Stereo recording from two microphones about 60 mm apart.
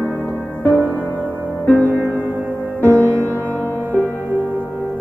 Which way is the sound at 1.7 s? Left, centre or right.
Right.